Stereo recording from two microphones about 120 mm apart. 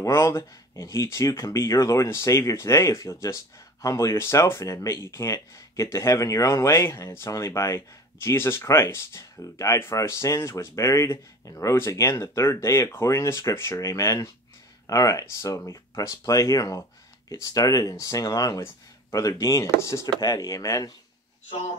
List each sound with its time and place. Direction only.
0.0 s speech: 25° left (ahead or behind)